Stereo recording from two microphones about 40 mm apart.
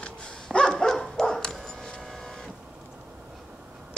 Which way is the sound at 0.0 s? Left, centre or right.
Left.